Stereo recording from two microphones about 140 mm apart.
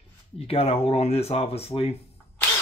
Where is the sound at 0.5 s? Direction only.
45° left (ahead or behind).